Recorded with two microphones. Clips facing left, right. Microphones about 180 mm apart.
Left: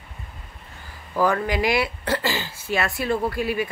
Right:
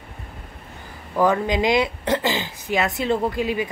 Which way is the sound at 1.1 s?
20° right (ahead or behind).